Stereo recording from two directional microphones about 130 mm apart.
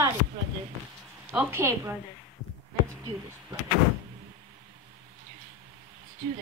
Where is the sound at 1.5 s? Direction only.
20° right (ahead or behind).